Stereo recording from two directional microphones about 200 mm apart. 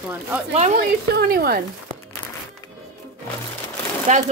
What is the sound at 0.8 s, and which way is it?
Speech, 50° right (ahead or behind).